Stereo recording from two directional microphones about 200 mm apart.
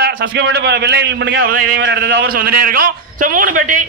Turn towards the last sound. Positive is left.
turn(degrees=-40)  # may be behind; listen again after turning